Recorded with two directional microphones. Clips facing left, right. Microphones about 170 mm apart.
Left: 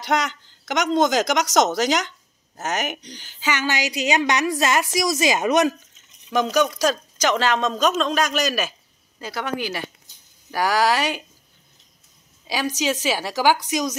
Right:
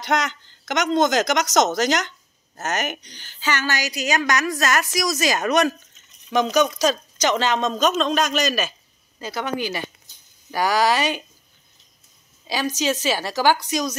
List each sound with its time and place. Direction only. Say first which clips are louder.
0.0 s a woman's voice: even; 10° left (ahead or behind)
6.3 s speech: right 1 dB; 5° left (ahead or behind)
12.4 s speech: even; 10° left (ahead or behind)